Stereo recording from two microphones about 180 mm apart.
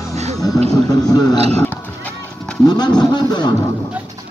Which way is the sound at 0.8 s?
20° left (ahead or behind).